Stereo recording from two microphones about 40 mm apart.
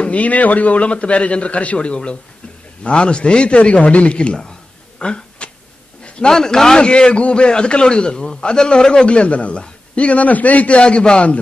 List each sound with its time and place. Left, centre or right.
0.0 s a man's voice: left
6.2 s a man's voice: centre
6.8 s a man's voice: left
10.8 s a man's voice: left